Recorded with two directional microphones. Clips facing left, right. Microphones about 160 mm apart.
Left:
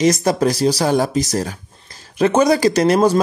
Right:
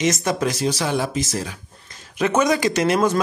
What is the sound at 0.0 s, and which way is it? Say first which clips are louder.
Speech: left 6 dB; 35° left (ahead or behind).